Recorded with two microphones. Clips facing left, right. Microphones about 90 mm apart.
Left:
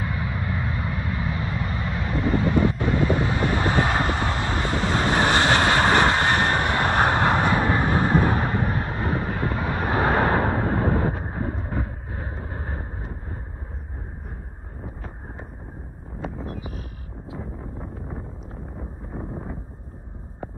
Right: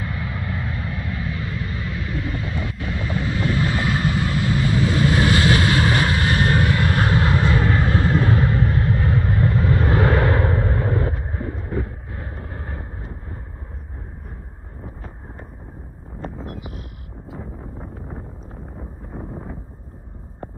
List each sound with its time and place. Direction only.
0.0 s vehicle: 30° left (ahead or behind)
16.4 s sheep: 30° left (ahead or behind)
17.4 s wind noise: centre (ahead or behind)
18.8 s a sound: centre (ahead or behind)